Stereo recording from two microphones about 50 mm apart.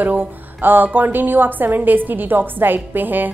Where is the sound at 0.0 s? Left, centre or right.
Right.